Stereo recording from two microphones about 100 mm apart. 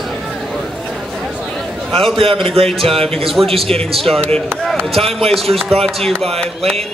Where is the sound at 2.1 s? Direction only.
60° right (ahead or behind).